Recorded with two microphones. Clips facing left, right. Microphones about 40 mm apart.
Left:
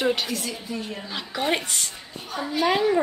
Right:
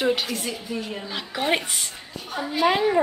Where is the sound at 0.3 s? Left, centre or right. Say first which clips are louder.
Right 1 dB; centre.